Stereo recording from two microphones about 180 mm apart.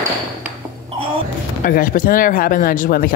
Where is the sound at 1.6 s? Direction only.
50° left (ahead or behind).